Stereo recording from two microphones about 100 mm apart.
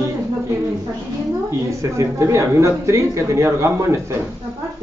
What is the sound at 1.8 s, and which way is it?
Speech, 30° right (ahead or behind).